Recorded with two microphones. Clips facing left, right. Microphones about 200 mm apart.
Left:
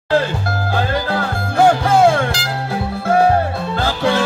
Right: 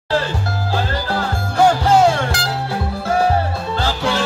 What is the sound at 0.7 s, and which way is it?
Music, 55° left (ahead or behind).